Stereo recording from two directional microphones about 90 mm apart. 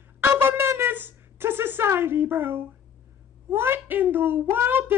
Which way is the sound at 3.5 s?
25° right (ahead or behind).